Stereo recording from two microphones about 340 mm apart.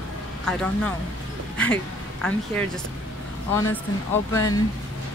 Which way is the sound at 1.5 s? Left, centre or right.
Centre.